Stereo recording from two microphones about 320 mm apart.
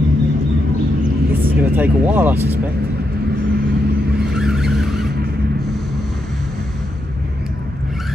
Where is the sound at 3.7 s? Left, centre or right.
Right.